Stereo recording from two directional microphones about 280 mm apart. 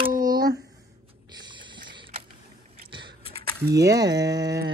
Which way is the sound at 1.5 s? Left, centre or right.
Centre.